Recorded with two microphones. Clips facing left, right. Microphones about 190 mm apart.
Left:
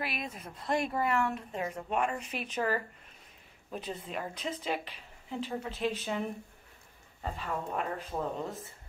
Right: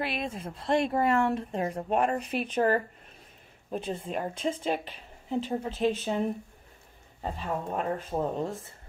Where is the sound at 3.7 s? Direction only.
25° right (ahead or behind).